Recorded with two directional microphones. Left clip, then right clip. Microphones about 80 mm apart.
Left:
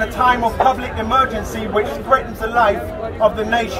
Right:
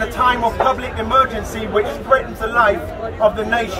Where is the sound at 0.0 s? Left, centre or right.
Centre.